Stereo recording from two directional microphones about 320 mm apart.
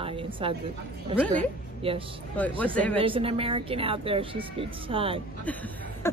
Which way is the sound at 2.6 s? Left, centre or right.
Centre.